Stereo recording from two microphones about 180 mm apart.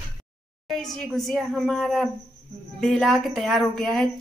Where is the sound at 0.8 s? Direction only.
Centre (ahead or behind).